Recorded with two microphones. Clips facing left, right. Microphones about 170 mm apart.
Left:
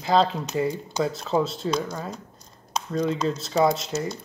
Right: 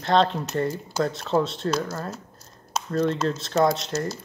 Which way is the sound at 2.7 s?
Centre (ahead or behind).